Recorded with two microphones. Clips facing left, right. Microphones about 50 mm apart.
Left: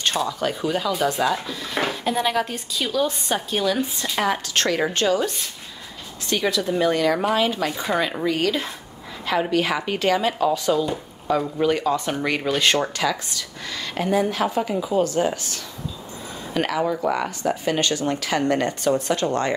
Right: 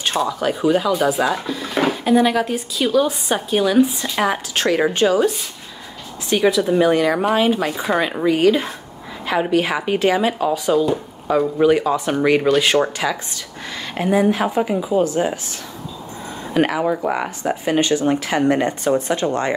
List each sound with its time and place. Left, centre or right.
0.0 s speech: centre
6.3 s speech: centre
12.8 s speech: right
16.5 s speech: centre